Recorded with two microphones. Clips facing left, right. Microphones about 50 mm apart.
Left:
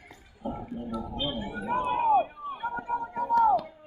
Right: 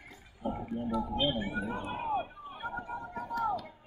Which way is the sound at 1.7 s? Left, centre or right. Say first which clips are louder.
Left 15 dB; left.